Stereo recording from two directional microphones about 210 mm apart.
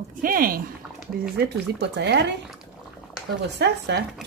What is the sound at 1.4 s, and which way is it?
Speech, 55° right (ahead or behind).